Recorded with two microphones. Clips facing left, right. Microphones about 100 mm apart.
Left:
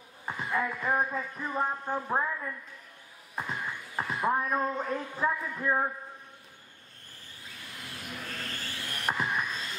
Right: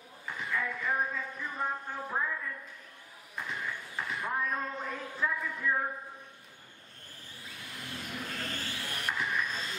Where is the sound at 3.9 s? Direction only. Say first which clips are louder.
Left 6 dB; 40° left (ahead or behind).